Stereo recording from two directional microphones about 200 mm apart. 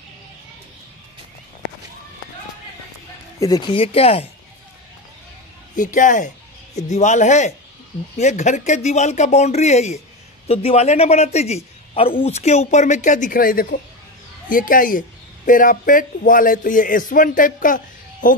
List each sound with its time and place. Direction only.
3.3 s speech: 20° left (ahead or behind)
5.8 s a man's voice: 40° left (ahead or behind)